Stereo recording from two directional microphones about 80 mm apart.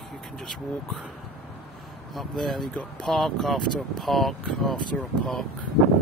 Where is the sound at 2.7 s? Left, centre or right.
Centre.